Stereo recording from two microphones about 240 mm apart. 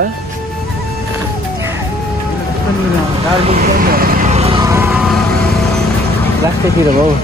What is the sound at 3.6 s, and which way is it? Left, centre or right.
Vehicle, right.